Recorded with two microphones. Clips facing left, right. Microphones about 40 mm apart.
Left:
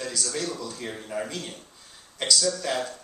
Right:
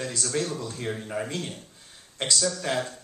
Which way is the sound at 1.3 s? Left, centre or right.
Right.